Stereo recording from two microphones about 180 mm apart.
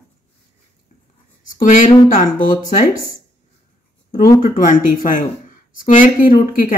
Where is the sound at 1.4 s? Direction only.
45° left (ahead or behind).